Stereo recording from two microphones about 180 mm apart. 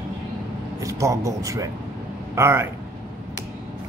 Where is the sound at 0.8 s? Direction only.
15° right (ahead or behind).